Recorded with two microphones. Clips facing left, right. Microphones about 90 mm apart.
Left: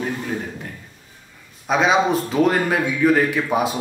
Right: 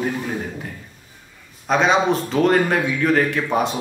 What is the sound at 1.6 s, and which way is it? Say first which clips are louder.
Speech: even; 5° left (ahead or behind).